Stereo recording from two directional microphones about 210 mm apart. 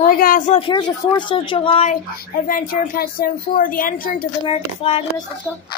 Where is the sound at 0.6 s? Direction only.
25° left (ahead or behind).